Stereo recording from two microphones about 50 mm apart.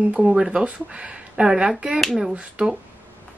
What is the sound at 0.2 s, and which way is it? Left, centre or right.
Speech, centre.